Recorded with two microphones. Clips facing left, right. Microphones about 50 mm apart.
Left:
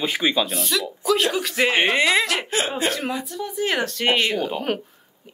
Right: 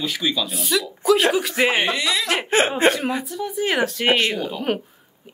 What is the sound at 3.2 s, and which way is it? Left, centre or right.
A woman's voice, centre.